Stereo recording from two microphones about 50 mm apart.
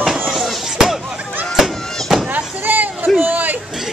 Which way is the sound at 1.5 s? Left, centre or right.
Centre.